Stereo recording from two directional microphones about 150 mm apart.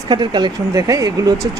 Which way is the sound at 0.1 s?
30° right (ahead or behind).